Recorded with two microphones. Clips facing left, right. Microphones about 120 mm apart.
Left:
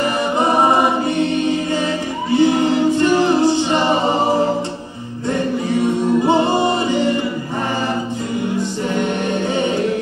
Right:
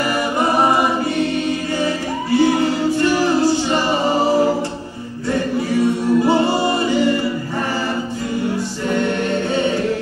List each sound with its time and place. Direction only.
0.4 s choir: 20° left (ahead or behind)
2.3 s a capella: 20° left (ahead or behind)
8.5 s music: 20° left (ahead or behind)